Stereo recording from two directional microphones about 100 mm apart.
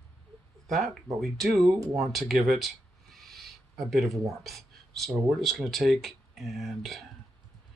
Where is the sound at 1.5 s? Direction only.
35° right (ahead or behind).